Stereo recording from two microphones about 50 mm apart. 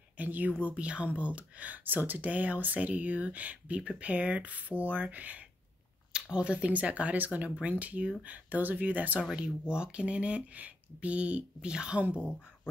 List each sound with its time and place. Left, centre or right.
0.2 s speech: right
9.3 s speech: centre
12.0 s speech: right